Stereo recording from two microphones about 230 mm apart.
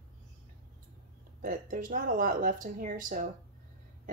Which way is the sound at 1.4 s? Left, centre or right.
Right.